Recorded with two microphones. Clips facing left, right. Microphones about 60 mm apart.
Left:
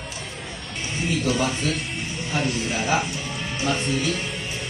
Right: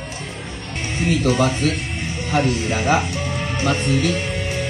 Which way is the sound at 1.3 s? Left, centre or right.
Right.